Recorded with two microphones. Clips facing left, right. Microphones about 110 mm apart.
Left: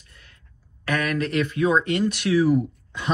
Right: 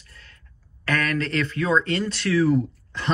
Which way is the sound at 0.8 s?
15° left (ahead or behind).